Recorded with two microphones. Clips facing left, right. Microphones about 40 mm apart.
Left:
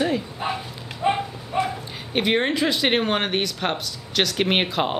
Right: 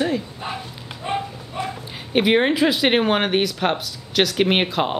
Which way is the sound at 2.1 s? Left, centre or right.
Centre.